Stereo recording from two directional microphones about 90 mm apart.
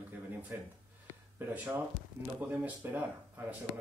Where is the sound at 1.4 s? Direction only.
20° right (ahead or behind).